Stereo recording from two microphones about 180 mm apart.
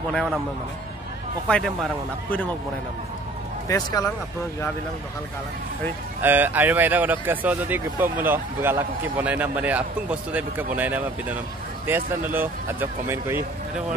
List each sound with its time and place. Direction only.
0.1 s speech: 5° left (ahead or behind)
1.5 s speech: 5° left (ahead or behind)
3.6 s speech: 20° left (ahead or behind)
6.2 s speech: 10° right (ahead or behind)